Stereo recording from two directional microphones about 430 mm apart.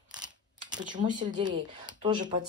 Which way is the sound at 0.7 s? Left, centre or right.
Centre.